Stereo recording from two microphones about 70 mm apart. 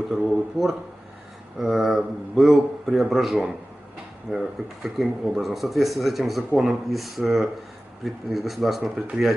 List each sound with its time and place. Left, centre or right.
0.3 s speech: centre